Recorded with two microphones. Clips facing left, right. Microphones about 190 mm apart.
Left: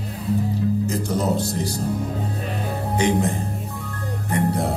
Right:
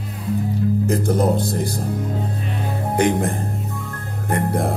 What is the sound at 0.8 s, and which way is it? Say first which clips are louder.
Music: right 4 dB; 55° right (ahead or behind).